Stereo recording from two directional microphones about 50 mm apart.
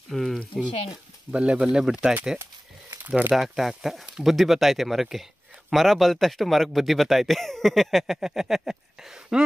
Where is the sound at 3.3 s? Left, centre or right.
Centre.